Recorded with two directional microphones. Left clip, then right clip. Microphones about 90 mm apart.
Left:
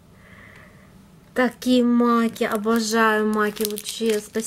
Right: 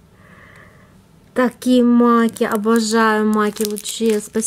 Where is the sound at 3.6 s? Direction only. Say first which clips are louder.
Right 4 dB; 20° right (ahead or behind).